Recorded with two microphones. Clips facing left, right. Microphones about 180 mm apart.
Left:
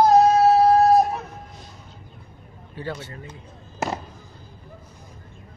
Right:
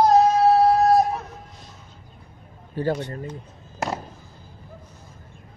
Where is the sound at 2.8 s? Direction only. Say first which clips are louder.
Right 8 dB; 40° right (ahead or behind).